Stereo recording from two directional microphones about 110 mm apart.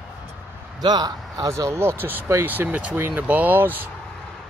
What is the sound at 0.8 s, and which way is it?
Speech, 40° right (ahead or behind).